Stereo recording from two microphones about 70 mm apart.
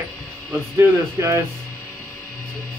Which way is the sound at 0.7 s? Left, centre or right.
Right.